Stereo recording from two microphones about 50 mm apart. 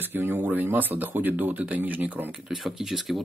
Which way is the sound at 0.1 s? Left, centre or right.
Right.